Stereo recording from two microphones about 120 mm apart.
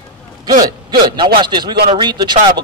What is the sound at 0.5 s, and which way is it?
Speech, 35° right (ahead or behind).